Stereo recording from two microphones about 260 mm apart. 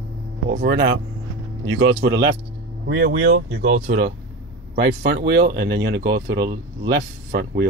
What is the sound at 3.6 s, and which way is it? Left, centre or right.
Speech, right.